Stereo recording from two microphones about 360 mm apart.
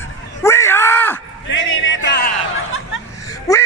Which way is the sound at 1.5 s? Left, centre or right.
Left.